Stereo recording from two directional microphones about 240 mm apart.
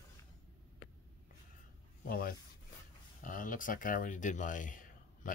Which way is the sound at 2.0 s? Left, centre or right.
Left.